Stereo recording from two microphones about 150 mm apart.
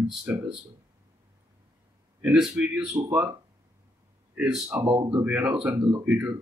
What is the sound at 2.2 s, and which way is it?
A man's voice, 5° right (ahead or behind).